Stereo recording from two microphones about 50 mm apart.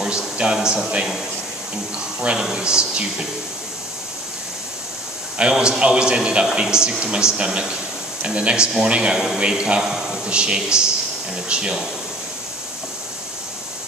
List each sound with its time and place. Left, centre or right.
0.4 s a man's voice: centre
2.3 s a man's voice: centre
5.4 s a man's voice: centre